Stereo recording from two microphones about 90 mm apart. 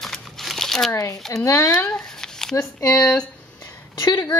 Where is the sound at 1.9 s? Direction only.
5° left (ahead or behind).